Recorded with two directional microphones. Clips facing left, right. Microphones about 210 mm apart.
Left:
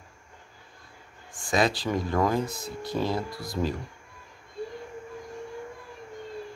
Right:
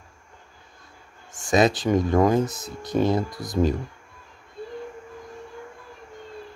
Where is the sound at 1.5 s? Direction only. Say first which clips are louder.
Right 6 dB; 20° right (ahead or behind).